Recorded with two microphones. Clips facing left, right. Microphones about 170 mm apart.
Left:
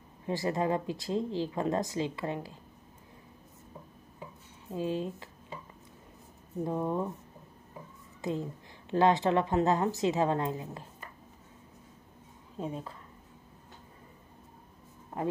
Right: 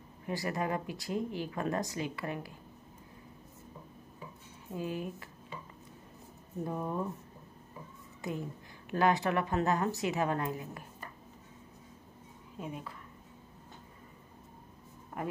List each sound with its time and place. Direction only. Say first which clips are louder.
0.3 s speech: left 4 dB; 25° left (ahead or behind)
4.6 s speech: left 4 dB; 25° left (ahead or behind)
6.6 s speech: left 4 dB; 20° left (ahead or behind)
8.2 s a woman's voice: left 4 dB; 25° left (ahead or behind)
12.5 s speech: left 5 dB; 30° left (ahead or behind)